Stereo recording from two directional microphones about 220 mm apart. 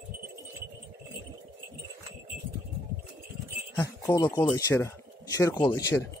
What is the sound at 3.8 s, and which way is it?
Speech, 15° left (ahead or behind).